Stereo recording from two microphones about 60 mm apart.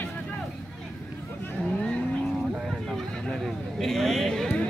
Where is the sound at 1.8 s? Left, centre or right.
Centre.